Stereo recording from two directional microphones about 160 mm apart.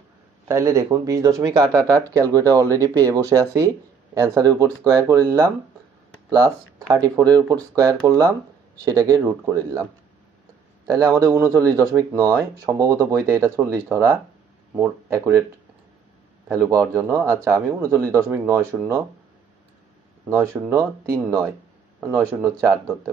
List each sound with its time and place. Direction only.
0.5 s speech: 20° right (ahead or behind)
10.9 s speech: 20° right (ahead or behind)
16.9 s speech: 20° right (ahead or behind)
20.2 s speech: 20° right (ahead or behind)
22.3 s speech: 20° right (ahead or behind)